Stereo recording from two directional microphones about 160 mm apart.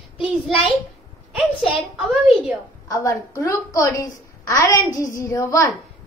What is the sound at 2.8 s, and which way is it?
A woman's voice, 20° left (ahead or behind).